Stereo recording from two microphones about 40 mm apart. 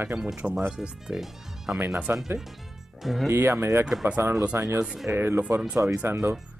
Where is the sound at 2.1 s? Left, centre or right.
Right.